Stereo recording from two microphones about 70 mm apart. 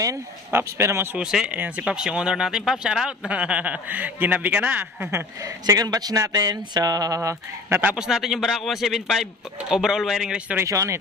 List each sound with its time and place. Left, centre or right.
0.5 s speech: right
1.2 s speech: centre
1.5 s speech: centre
5.1 s speech: right
7.2 s speech: right
7.9 s a man's voice: centre
10.6 s speech: right